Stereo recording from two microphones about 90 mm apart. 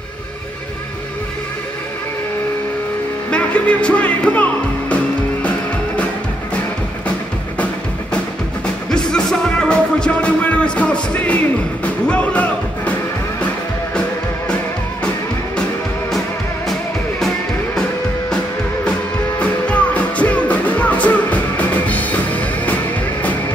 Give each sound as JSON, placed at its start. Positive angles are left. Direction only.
{"t": 3.3, "sound": "music", "side_deg": 15}
{"t": 8.9, "sound": "music", "side_deg": 10}
{"t": 18.9, "sound": "music", "side_deg": 15}